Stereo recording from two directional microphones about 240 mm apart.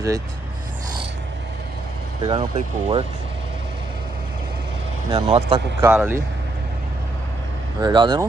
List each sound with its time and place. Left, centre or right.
2.2 s speech: right
5.1 s speech: right
5.8 s speech: centre
7.8 s speech: centre